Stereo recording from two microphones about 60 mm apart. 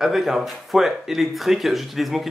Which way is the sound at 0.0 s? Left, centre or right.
Centre.